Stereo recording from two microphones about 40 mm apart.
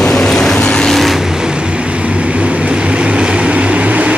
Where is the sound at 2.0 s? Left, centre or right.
Right.